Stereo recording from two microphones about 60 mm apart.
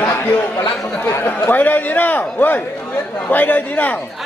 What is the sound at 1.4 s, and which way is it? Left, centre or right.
A man's voice, left.